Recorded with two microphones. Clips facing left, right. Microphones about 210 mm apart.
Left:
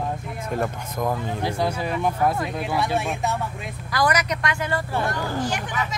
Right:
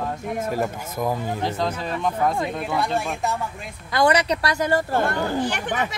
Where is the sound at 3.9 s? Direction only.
30° right (ahead or behind); by 5.1 s 45° right (ahead or behind).